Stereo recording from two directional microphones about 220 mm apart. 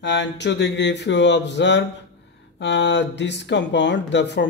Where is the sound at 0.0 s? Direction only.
55° left (ahead or behind).